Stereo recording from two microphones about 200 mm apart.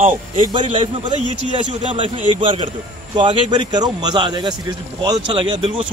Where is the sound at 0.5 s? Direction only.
25° right (ahead or behind).